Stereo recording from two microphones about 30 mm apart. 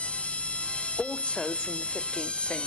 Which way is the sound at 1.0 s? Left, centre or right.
Left.